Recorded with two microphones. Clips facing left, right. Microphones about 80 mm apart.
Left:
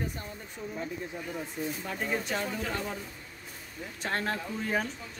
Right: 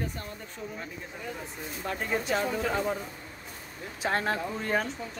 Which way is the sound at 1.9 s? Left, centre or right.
Centre.